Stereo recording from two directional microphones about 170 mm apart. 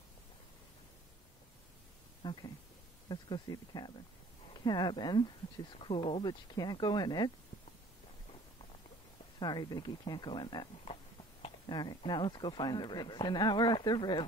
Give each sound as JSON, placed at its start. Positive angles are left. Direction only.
{"t": 2.2, "sound": "a man's voice", "side_deg": 25}
{"t": 9.4, "sound": "a man's voice", "side_deg": 25}